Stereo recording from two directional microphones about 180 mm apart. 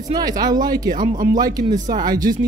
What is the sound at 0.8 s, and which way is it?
Speech, 50° right (ahead or behind).